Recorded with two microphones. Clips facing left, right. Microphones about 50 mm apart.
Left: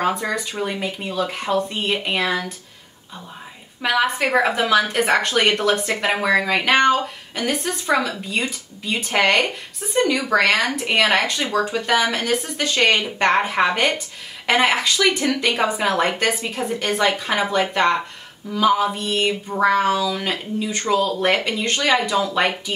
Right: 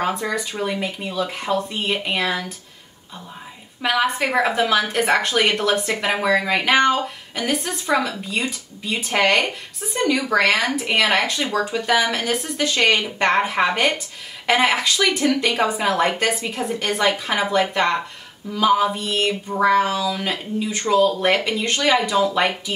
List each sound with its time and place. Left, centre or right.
0.3 s a woman's voice: centre
3.8 s a woman's voice: centre
6.0 s a sound: centre
6.4 s a woman's voice: centre
19.2 s a sound: centre
19.6 s a woman's voice: centre